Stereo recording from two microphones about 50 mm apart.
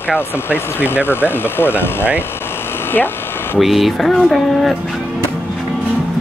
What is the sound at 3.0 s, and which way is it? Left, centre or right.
Speech, left.